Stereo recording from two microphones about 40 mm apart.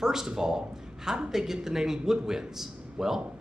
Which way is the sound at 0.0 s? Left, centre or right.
Centre.